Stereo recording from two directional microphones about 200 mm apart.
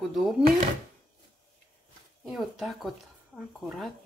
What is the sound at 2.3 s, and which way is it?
Speech, centre (ahead or behind).